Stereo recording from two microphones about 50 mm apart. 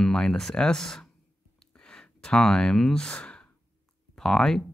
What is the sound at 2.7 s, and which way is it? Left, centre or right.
Speech, centre.